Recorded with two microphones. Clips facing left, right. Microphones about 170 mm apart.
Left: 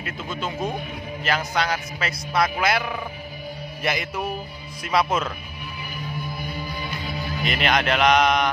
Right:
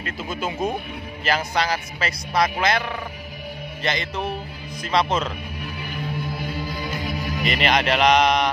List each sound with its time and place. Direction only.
1.2 s speech: centre (ahead or behind)
3.8 s music: 10° left (ahead or behind)
4.9 s speech: 5° left (ahead or behind)
6.4 s music: 90° right
7.4 s speech: centre (ahead or behind)